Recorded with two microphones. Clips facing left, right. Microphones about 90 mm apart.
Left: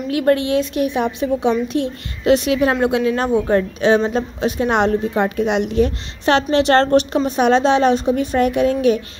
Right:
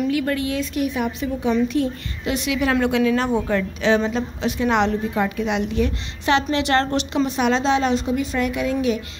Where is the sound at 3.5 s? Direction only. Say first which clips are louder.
Left 5 dB; 50° left (ahead or behind).